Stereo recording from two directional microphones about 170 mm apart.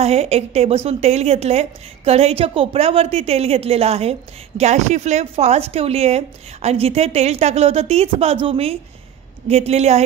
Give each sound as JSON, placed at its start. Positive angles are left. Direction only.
{"t": 0.0, "sound": "a woman's voice", "side_deg": -40}